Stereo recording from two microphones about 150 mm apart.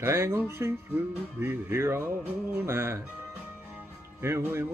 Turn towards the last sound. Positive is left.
turn(degrees=-15)  # may be behind; listen again after turning